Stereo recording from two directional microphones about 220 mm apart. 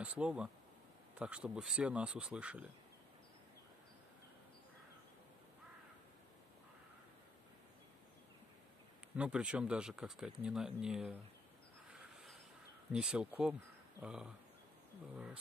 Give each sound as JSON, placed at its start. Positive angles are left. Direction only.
{"t": 0.0, "sound": "speech", "side_deg": -5}
{"t": 9.1, "sound": "speech", "side_deg": -5}
{"t": 11.9, "sound": "a sound", "side_deg": 0}
{"t": 12.9, "sound": "speech", "side_deg": -5}